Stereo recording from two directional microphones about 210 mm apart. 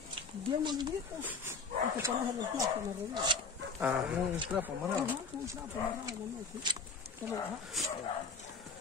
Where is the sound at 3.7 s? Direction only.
5° right (ahead or behind).